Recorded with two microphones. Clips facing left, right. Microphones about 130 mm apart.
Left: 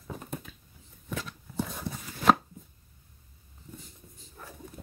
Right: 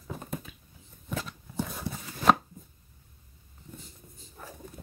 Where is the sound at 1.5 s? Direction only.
Centre (ahead or behind).